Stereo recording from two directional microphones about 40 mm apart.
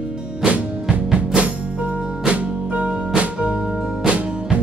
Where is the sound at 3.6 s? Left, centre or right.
Right.